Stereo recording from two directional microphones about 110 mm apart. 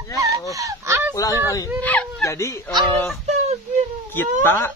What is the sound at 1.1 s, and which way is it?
Speech, 30° left (ahead or behind).